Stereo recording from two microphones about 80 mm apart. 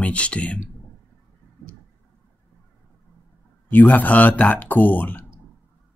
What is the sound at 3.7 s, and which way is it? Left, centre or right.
Speech, left.